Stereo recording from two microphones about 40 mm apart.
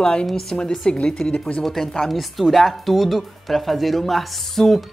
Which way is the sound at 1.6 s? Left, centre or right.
Centre.